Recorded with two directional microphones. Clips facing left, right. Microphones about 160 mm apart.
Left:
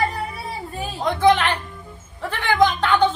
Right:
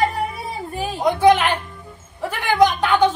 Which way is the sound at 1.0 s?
15° right (ahead or behind).